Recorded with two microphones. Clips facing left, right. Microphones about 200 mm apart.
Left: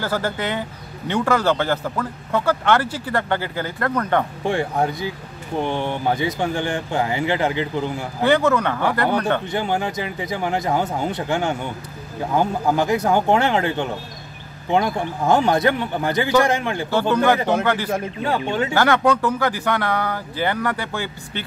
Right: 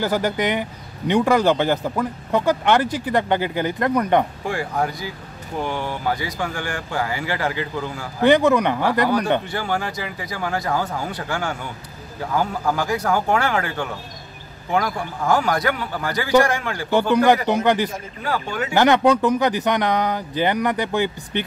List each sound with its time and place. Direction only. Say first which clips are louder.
0.0 s a man's voice: right 3 dB; 15° right (ahead or behind)
4.5 s speech: left 3 dB; 25° left (ahead or behind)
8.2 s a man's voice: right 2 dB; 15° right (ahead or behind)
9.5 s speech: left 2 dB; 20° left (ahead or behind)
17.5 s a man's voice: right 1 dB; 15° right (ahead or behind)
18.2 s speech: left 1 dB; 25° left (ahead or behind)
18.7 s a man's voice: right 3 dB; 20° right (ahead or behind)